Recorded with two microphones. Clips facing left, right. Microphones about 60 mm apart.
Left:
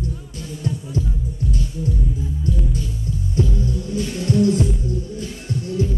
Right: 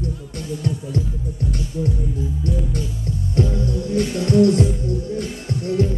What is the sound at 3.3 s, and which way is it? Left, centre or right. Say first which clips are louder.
Music: right 2 dB; right.